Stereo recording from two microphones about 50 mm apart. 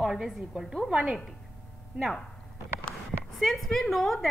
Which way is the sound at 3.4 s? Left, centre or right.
Centre.